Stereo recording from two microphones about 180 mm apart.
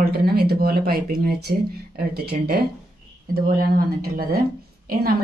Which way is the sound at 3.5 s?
55° right (ahead or behind).